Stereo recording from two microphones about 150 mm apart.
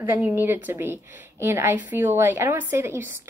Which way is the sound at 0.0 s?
15° right (ahead or behind).